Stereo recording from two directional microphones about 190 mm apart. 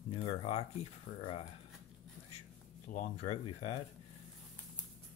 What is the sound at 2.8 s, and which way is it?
Speech, 35° left (ahead or behind).